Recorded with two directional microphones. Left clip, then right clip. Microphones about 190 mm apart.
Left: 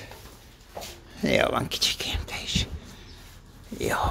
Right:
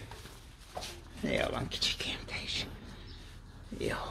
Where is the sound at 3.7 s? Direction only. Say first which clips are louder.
Left 9 dB; 20° left (ahead or behind).